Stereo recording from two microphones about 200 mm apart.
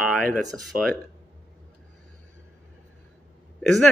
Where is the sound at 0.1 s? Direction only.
5° left (ahead or behind).